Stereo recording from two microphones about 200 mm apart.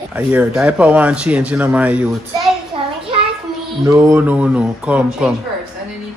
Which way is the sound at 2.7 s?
25° right (ahead or behind).